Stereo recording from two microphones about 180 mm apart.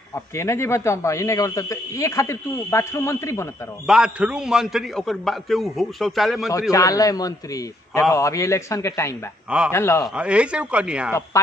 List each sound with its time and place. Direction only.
0.4 s a man's voice: 15° left (ahead or behind)
3.8 s a man's voice: 5° right (ahead or behind)
6.7 s a man's voice: 20° left (ahead or behind)
10.1 s speech: 5° right (ahead or behind)